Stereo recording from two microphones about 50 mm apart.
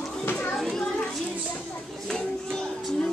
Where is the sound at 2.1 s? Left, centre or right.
Centre.